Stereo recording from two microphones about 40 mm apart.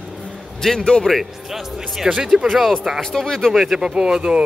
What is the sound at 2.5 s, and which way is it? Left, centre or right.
Speech, centre.